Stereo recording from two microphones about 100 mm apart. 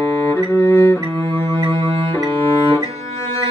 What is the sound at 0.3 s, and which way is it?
Music, 25° left (ahead or behind).